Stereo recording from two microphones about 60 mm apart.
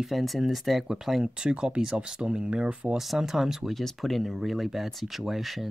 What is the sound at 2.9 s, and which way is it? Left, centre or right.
Speech, centre.